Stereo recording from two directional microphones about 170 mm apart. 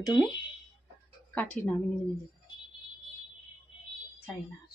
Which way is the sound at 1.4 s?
10° left (ahead or behind).